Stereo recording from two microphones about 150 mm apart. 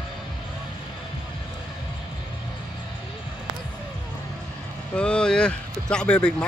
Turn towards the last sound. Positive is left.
turn(degrees=5)  # may be behind; listen again after turning